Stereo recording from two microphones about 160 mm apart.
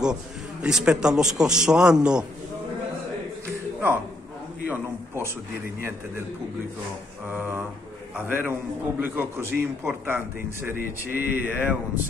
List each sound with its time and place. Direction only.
0.0 s a man's voice: 5° right (ahead or behind)
4.6 s a sound: 15° right (ahead or behind)
7.2 s a man's voice: 10° right (ahead or behind)